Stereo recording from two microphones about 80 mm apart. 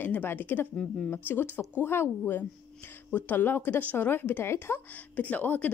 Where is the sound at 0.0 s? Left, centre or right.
Left.